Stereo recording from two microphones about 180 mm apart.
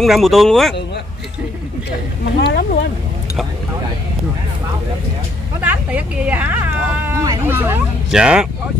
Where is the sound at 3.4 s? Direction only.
Centre (ahead or behind).